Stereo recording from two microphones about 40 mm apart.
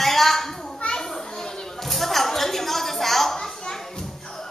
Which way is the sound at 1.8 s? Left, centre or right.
Centre.